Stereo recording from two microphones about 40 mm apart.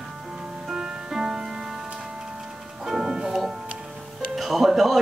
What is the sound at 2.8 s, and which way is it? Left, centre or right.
Music, centre.